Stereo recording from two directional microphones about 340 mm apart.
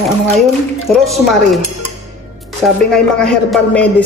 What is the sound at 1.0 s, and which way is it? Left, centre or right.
Speech, centre.